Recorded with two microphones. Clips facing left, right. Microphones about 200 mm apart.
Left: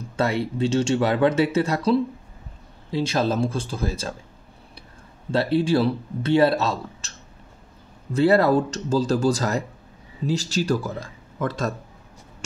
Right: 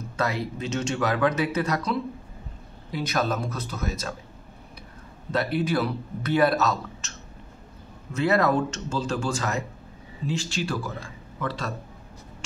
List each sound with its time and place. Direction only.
0.2 s speech: 30° left (ahead or behind)
5.3 s a man's voice: 30° left (ahead or behind); by 11.7 s 45° left (ahead or behind)